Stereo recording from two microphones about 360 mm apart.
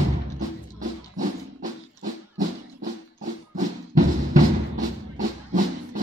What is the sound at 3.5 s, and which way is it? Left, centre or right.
Music, right.